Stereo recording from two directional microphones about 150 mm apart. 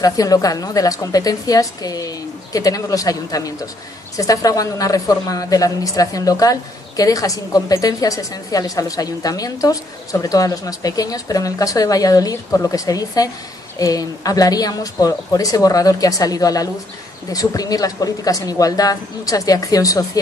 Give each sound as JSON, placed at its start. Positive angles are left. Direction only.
{"t": 0.0, "sound": "a woman's voice", "side_deg": 25}